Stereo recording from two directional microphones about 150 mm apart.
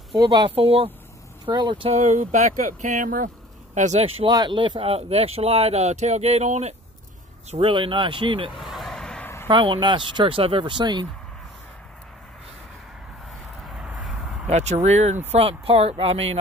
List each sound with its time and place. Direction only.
0.2 s speech: 25° right (ahead or behind)
0.6 s speech: 40° right (ahead or behind)
1.4 s speech: 30° right (ahead or behind)
2.0 s speech: 55° right (ahead or behind)
3.7 s speech: 50° right (ahead or behind)
4.3 s speech: 30° right (ahead or behind); by 6.7 s 50° right (ahead or behind)
7.5 s speech: 35° right (ahead or behind)
8.5 s a sound: centre (ahead or behind)
9.5 s speech: 30° right (ahead or behind)
13.7 s a sound: 5° right (ahead or behind)
14.5 s speech: 50° right (ahead or behind)